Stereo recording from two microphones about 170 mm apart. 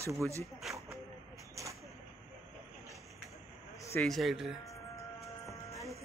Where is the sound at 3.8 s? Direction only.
15° left (ahead or behind).